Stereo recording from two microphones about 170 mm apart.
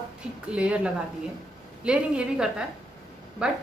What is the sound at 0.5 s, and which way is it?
A woman's voice, 5° right (ahead or behind).